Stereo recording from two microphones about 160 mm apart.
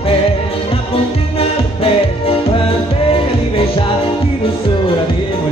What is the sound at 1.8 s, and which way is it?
Music, 35° left (ahead or behind).